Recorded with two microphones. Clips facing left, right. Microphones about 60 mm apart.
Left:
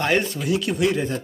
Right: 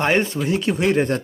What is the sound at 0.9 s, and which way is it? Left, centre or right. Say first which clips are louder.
Speech: right 5 dB; right.